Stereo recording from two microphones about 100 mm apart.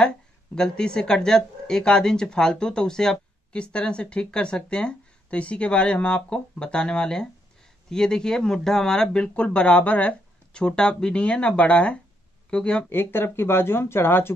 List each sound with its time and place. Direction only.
0.6 s speech: 10° left (ahead or behind)
12.9 s speech: 20° left (ahead or behind)